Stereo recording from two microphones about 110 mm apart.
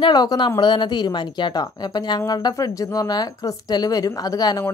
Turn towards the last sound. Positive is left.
turn(degrees=35)  # may be behind; listen again after turning